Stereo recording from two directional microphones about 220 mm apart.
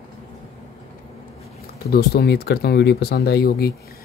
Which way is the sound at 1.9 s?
45° left (ahead or behind).